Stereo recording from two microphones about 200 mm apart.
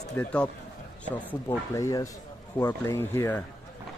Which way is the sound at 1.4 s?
15° left (ahead or behind).